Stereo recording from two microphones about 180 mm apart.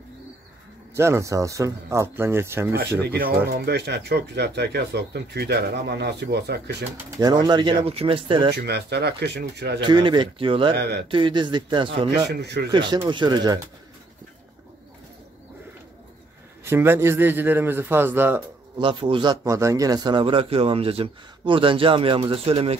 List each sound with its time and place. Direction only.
0.9 s a man's voice: 15° right (ahead or behind)
3.0 s speech: 60° right (ahead or behind)
7.2 s a man's voice: 20° right (ahead or behind)
8.6 s speech: 65° right (ahead or behind)
9.8 s a man's voice: 25° right (ahead or behind)
10.8 s speech: 65° right (ahead or behind)
11.1 s a man's voice: 25° right (ahead or behind)
12.3 s speech: 70° right (ahead or behind)
12.7 s a man's voice: 25° right (ahead or behind)
16.6 s a man's voice: 15° right (ahead or behind)
18.8 s a man's voice: 30° right (ahead or behind)